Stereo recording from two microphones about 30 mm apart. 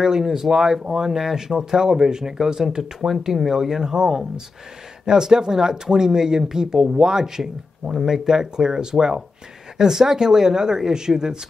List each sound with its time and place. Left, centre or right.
0.1 s speech: centre